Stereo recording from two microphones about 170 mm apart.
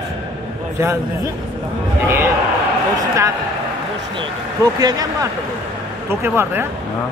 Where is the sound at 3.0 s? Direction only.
20° right (ahead or behind).